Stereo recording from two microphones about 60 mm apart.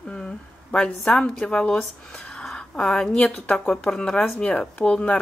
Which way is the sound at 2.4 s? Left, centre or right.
Centre.